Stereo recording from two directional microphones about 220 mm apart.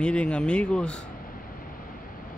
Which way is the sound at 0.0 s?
5° left (ahead or behind).